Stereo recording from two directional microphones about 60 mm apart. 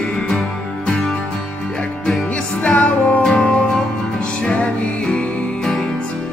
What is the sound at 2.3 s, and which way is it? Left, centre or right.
Music, left.